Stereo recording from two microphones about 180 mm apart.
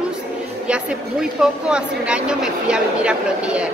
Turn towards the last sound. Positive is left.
turn(degrees=-5)  # may be behind; listen again after turning